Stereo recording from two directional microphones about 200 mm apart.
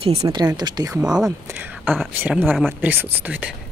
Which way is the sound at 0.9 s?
5° right (ahead or behind).